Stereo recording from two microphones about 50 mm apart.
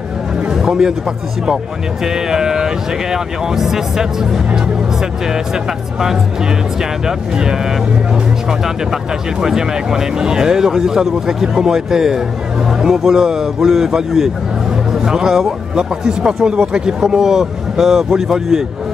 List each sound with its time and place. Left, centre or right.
0.5 s a sound: centre
2.0 s speech: centre
6.8 s speech: centre